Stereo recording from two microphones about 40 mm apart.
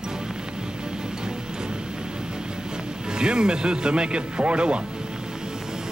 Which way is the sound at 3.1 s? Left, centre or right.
Right.